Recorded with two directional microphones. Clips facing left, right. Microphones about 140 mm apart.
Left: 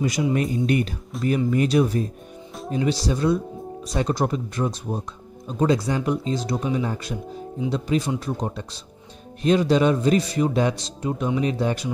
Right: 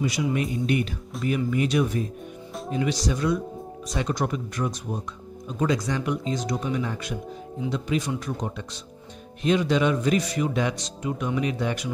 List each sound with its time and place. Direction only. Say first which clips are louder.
0.0 s speech: left 3 dB; 40° left (ahead or behind)